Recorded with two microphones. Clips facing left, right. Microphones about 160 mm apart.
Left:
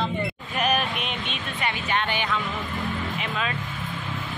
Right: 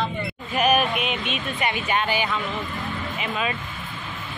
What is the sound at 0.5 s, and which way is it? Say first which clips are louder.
Speech: right 5 dB; 10° right (ahead or behind).